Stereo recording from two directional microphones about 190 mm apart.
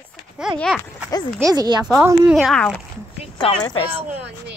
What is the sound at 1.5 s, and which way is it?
Speech, 20° right (ahead or behind).